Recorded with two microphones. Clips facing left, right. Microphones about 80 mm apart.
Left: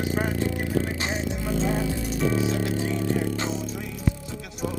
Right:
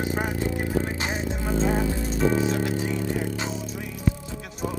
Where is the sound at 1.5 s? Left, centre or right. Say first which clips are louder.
Right 2 dB; right.